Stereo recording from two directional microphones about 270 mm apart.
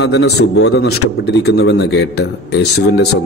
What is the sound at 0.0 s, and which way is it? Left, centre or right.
A man's voice, left.